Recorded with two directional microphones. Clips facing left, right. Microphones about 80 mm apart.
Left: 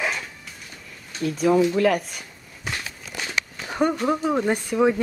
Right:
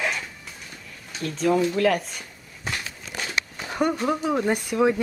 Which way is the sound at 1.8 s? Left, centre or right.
Centre.